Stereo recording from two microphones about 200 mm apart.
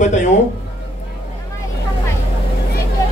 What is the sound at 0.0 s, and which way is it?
Speech, 40° left (ahead or behind).